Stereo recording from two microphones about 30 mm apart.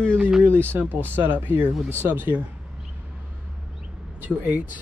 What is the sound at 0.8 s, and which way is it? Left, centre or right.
Speech, right.